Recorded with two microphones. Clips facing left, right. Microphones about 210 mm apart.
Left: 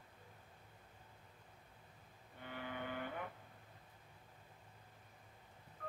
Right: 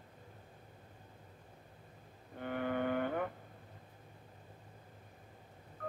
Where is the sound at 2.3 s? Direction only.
55° right (ahead or behind).